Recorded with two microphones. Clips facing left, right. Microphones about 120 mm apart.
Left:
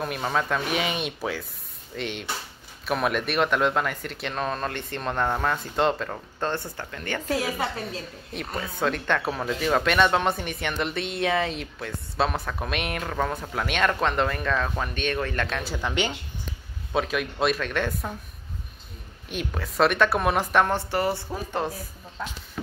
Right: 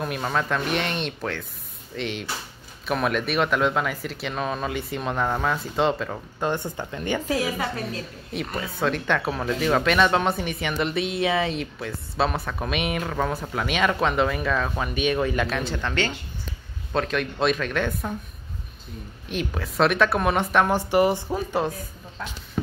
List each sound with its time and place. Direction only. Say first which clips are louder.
0.0 s speech: right 1 dB; centre (ahead or behind)
6.4 s speech: right 3 dB; 15° right (ahead or behind)
8.3 s speech: right 2 dB; centre (ahead or behind)
15.7 s speech: right 1 dB; 15° left (ahead or behind)
19.2 s speech: right 3 dB; centre (ahead or behind)
20.7 s speech: right 5 dB; 15° right (ahead or behind)